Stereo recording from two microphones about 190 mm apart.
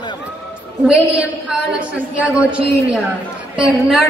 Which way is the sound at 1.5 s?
5° right (ahead or behind).